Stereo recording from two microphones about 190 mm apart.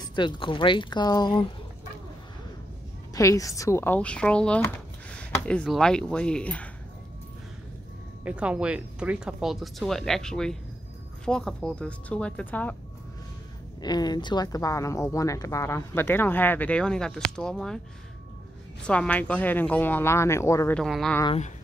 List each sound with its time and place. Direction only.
0.0 s speech: 25° left (ahead or behind)
3.2 s speech: 15° left (ahead or behind)
8.2 s speech: 5° right (ahead or behind); by 12.7 s 10° left (ahead or behind)
13.7 s speech: 20° left (ahead or behind); by 17.7 s 5° left (ahead or behind)
18.9 s speech: 5° left (ahead or behind)
20.8 s speech: centre (ahead or behind)